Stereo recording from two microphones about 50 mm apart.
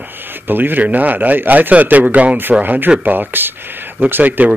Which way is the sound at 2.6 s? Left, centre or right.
Right.